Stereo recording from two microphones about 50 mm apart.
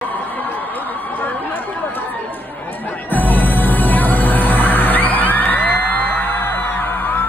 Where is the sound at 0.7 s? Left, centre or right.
Left.